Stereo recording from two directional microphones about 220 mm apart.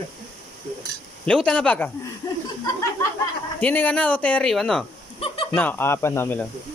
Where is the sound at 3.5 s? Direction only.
10° left (ahead or behind).